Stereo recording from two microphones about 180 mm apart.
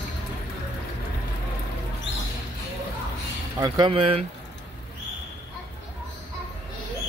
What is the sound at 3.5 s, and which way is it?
Speech, 20° right (ahead or behind).